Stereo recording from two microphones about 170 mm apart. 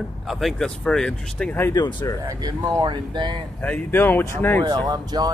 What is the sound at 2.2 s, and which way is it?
Speech, 20° right (ahead or behind).